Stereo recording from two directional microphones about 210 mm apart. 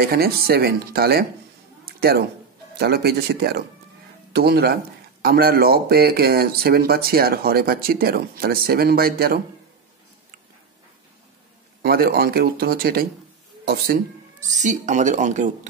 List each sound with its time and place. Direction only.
0.0 s speech: 50° right (ahead or behind)
1.9 s a sound: 45° right (ahead or behind)
2.7 s speech: 50° right (ahead or behind)
11.8 s speech: 45° right (ahead or behind)
14.5 s speech: 35° right (ahead or behind)